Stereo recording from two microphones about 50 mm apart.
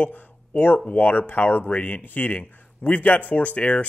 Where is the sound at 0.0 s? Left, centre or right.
Left.